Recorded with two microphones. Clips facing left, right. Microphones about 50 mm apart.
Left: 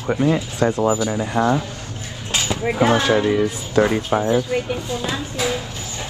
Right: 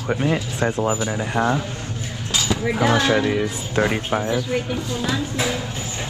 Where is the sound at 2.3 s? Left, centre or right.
Left.